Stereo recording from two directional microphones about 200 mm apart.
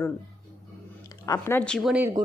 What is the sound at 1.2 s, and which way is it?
Speech, 10° left (ahead or behind).